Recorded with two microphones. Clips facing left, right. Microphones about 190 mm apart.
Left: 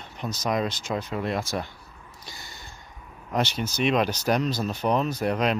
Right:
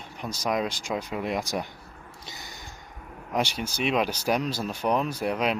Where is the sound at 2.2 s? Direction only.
20° right (ahead or behind).